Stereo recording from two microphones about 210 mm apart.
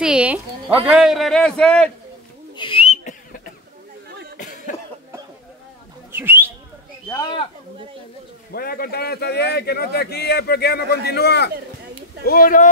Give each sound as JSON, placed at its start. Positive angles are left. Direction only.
{"t": 0.0, "sound": "a man's voice", "side_deg": -5}
{"t": 2.5, "sound": "whistle", "side_deg": 25}
{"t": 4.4, "sound": "cough", "side_deg": 35}
{"t": 6.1, "sound": "speech", "side_deg": -10}
{"t": 8.5, "sound": "speech", "side_deg": 45}